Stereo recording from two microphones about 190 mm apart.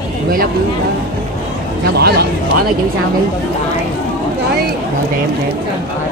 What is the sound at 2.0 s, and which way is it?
Speech, 55° right (ahead or behind).